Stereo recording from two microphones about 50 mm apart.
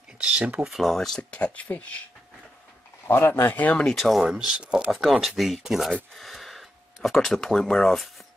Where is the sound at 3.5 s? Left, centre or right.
Left.